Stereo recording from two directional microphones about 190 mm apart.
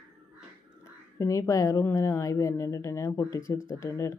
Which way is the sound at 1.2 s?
15° left (ahead or behind).